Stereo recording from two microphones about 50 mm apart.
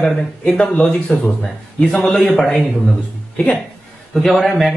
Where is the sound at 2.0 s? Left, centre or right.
Centre.